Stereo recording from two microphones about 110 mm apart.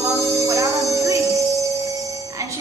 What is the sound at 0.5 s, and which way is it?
Music, 30° right (ahead or behind).